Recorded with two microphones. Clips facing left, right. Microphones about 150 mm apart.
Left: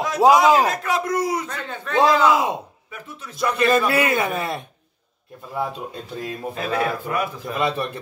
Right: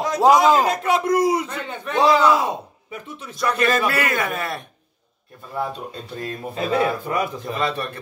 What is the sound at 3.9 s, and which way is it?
Speech, 20° left (ahead or behind).